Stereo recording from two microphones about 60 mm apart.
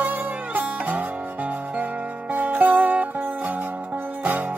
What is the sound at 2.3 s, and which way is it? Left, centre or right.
Music, right.